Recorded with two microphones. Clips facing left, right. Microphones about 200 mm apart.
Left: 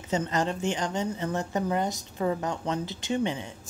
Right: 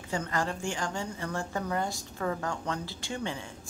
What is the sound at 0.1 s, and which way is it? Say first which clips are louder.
A woman's voice: left 4 dB; 20° left (ahead or behind).